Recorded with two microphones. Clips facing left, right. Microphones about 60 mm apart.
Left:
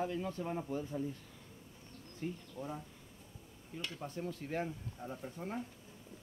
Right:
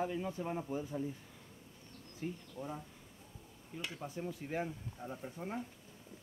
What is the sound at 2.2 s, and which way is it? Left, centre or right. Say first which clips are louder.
Speech: even; centre.